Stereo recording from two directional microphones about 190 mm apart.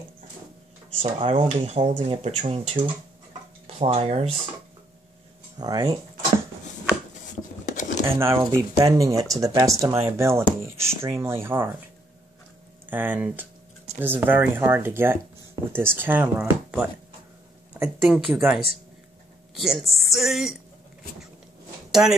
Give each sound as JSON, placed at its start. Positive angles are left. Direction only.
{"t": 1.0, "sound": "speech", "side_deg": -30}
{"t": 5.6, "sound": "speech", "side_deg": -20}
{"t": 7.6, "sound": "a sound", "side_deg": 40}
{"t": 8.1, "sound": "speech", "side_deg": -15}
{"t": 12.8, "sound": "speech", "side_deg": -10}
{"t": 19.6, "sound": "speech", "side_deg": 0}